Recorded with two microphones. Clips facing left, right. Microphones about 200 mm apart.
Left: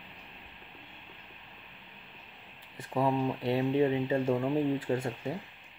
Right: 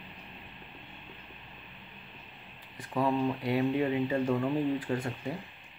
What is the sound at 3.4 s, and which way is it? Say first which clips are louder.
Speech: left 1 dB; 25° left (ahead or behind).